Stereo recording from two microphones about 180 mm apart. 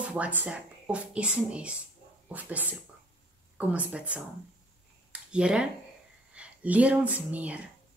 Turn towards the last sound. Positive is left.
turn(degrees=-10)  # may be behind; listen again after turning